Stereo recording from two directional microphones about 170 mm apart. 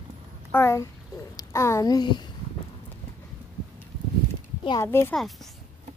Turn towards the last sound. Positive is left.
turn(degrees=15)  # may be behind; listen again after turning